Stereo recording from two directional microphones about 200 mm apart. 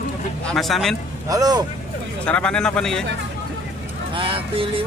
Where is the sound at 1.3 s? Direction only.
20° right (ahead or behind).